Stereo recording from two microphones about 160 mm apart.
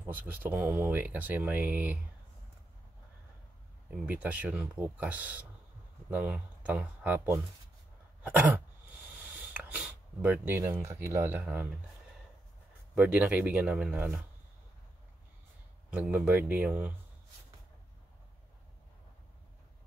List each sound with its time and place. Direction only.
0.0 s speech: 10° right (ahead or behind)
4.0 s speech: 10° right (ahead or behind)
8.2 s throat clearing: 10° right (ahead or behind)
9.3 s speech: 10° right (ahead or behind)
12.9 s speech: 10° right (ahead or behind)
15.9 s speech: 10° right (ahead or behind)